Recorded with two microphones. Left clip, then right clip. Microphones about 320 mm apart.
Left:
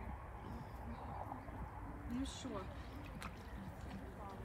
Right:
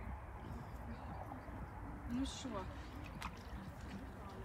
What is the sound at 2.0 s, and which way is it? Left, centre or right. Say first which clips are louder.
Speech: right 2 dB; centre.